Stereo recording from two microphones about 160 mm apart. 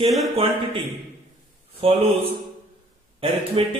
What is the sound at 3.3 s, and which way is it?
Speech, 35° right (ahead or behind).